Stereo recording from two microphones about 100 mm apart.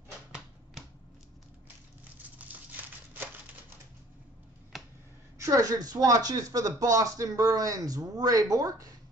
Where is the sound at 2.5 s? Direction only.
15° right (ahead or behind).